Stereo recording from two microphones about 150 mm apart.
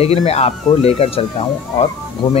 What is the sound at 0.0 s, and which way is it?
Speech, 45° left (ahead or behind).